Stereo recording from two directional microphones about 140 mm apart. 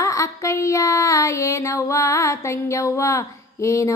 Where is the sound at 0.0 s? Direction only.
20° left (ahead or behind).